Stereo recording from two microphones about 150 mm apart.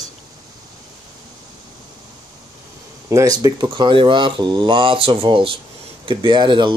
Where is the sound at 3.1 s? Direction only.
25° right (ahead or behind).